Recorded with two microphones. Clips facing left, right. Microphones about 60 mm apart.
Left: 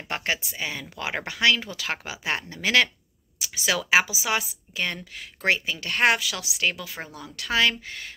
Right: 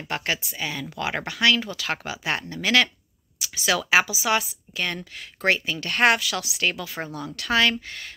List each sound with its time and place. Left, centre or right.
0.1 s a woman's voice: left